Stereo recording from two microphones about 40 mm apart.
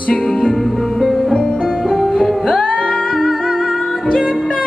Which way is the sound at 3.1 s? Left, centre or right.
Centre.